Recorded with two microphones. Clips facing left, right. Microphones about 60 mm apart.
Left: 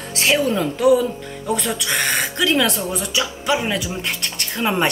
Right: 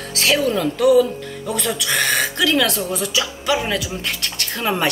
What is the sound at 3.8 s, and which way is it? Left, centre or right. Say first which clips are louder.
Speech: even; left.